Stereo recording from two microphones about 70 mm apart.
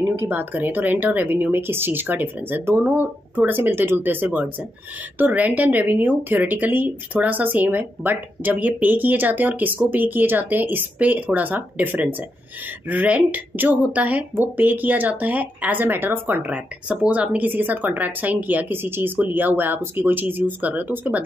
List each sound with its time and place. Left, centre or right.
0.0 s speech: right
16.9 s speech: centre